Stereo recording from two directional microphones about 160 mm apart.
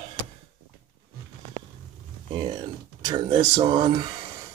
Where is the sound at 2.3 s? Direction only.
30° right (ahead or behind).